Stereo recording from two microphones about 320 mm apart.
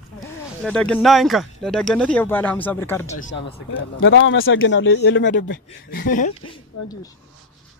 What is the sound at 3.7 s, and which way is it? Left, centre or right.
Speech, left.